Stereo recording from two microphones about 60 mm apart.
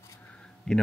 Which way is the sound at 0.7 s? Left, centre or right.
Centre.